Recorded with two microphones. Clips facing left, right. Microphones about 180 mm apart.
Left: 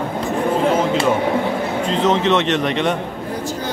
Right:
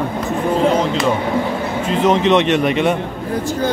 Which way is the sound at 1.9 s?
15° right (ahead or behind).